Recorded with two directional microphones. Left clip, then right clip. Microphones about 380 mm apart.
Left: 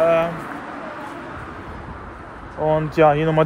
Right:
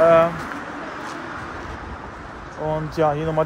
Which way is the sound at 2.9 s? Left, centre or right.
Left.